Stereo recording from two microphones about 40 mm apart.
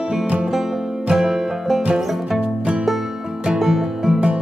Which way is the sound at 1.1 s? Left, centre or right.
Centre.